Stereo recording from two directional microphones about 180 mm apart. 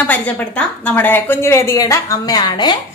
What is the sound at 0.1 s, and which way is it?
A woman's voice, 10° left (ahead or behind).